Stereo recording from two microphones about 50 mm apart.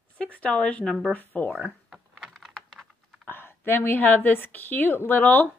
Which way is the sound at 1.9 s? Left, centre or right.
Centre.